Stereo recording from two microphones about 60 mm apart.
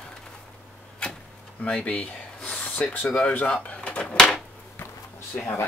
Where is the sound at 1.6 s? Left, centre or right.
Centre.